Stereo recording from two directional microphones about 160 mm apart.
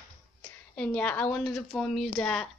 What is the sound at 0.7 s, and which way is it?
A woman's voice, 5° left (ahead or behind).